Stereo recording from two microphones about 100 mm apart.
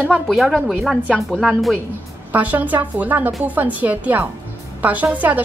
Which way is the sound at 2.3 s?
15° right (ahead or behind).